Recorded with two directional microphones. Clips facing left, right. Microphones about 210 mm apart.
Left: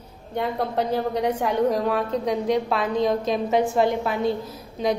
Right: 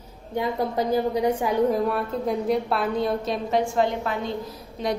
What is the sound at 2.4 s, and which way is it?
A woman's voice, 5° right (ahead or behind).